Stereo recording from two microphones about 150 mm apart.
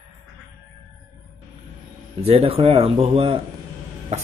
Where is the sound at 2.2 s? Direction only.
40° right (ahead or behind).